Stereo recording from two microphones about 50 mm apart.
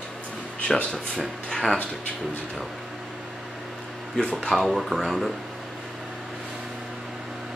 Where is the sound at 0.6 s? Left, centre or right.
Centre.